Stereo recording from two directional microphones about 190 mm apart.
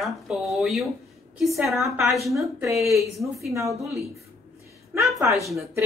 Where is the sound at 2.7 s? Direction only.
15° right (ahead or behind).